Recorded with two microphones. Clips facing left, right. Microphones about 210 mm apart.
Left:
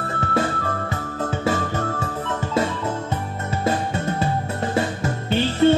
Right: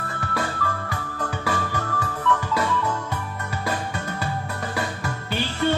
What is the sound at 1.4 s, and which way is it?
Music, 25° left (ahead or behind).